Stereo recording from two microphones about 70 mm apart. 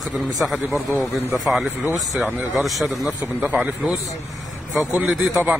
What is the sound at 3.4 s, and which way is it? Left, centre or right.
Speech, right.